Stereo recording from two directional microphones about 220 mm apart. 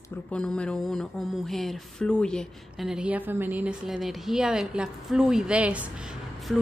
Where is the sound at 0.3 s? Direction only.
5° left (ahead or behind).